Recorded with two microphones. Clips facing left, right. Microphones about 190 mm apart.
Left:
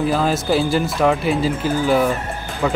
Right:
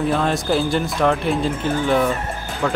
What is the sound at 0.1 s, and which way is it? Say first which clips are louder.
Speech: left 1 dB; centre (ahead or behind).